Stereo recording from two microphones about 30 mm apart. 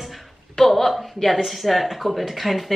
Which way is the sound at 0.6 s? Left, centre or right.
Centre.